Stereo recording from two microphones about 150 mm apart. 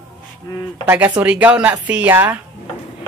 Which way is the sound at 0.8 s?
10° right (ahead or behind).